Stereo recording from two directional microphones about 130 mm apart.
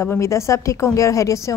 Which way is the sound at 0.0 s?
20° left (ahead or behind).